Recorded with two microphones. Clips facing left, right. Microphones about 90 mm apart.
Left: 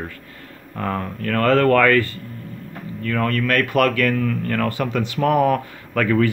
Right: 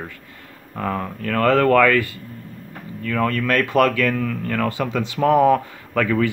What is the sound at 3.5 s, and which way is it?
Speech, 25° right (ahead or behind).